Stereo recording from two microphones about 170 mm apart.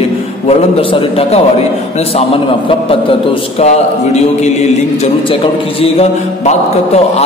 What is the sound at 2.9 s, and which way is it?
Speech, 35° left (ahead or behind).